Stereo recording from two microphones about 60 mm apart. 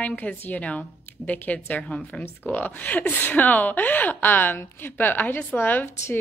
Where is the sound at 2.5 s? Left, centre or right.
Left.